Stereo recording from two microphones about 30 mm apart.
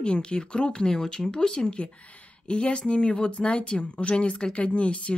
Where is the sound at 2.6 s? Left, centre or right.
Left.